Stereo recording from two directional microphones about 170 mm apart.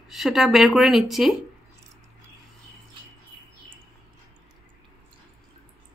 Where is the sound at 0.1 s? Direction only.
Centre (ahead or behind).